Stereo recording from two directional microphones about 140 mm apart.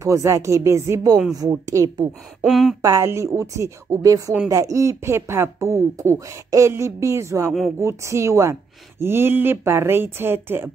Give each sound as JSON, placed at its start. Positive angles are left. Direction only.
{"t": 0.0, "sound": "speech", "side_deg": -20}
{"t": 2.4, "sound": "speech", "side_deg": 0}
{"t": 2.8, "sound": "speech", "side_deg": -20}